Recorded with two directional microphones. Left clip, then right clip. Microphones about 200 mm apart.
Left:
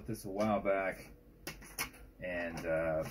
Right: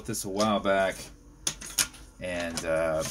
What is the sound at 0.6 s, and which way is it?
Speech, 25° right (ahead or behind).